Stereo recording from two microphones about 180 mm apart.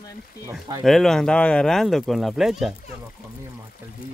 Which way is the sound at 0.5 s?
20° right (ahead or behind).